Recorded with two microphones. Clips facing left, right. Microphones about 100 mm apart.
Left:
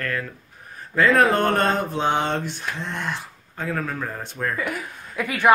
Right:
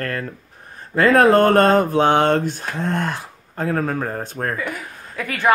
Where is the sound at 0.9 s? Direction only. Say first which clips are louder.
Right 5 dB; 40° right (ahead or behind).